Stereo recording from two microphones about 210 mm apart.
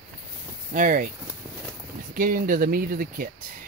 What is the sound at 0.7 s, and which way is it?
Speech, 40° right (ahead or behind).